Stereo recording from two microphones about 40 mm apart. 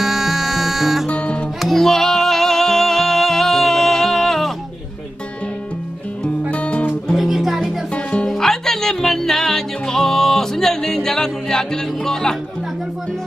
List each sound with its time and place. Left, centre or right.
0.0 s music: centre
1.1 s music: left
1.6 s music: centre
6.5 s music: left
7.2 s music: centre
7.9 s music: left
8.3 s music: centre